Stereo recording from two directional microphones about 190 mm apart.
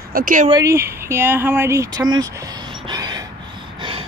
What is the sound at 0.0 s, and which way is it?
Speech, 50° right (ahead or behind).